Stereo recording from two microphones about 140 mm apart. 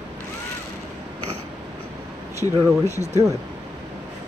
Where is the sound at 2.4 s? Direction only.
20° left (ahead or behind).